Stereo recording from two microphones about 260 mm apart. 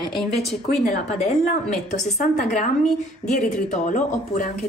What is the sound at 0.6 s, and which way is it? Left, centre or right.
A woman's voice, left.